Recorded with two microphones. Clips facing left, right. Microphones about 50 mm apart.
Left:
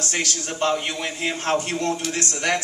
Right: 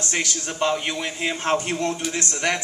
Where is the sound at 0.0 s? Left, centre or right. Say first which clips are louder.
Even; right.